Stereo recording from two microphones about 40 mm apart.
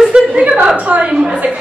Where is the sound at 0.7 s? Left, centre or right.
Right.